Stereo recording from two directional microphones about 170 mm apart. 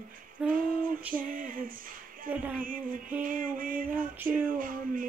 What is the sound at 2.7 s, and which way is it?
Music, 55° right (ahead or behind).